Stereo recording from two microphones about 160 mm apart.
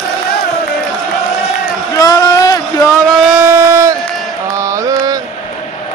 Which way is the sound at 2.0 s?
20° left (ahead or behind).